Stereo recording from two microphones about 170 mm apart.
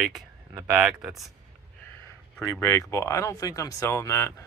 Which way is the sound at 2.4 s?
15° left (ahead or behind).